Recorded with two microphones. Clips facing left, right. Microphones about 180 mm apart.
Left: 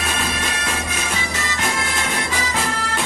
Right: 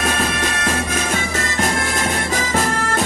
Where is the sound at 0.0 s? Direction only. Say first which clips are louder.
Right 4 dB; 50° right (ahead or behind).